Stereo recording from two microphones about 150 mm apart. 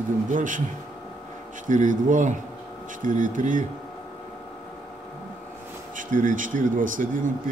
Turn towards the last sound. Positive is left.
turn(degrees=-60)  # may be behind; listen again after turning